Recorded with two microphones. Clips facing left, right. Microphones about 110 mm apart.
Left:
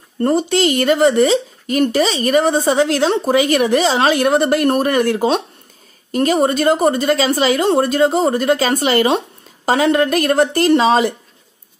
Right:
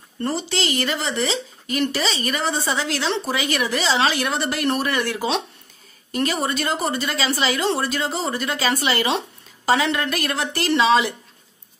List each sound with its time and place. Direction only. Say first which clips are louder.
0.2 s speech: left 9 dB; 50° left (ahead or behind)